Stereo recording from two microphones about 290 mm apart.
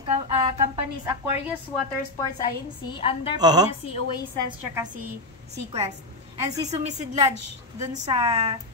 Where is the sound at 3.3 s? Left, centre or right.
Centre.